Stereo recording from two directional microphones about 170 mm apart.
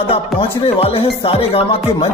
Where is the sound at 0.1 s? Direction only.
35° left (ahead or behind).